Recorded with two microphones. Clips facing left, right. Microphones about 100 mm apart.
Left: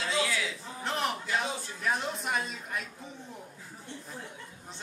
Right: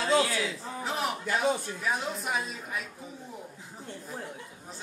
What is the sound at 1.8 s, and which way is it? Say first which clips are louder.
Speech: even; centre (ahead or behind).